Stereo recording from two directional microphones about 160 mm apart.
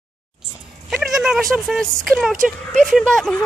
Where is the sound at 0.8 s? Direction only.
Centre (ahead or behind).